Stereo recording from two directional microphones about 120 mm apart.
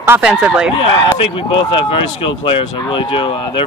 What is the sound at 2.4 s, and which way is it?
Speech, 45° left (ahead or behind).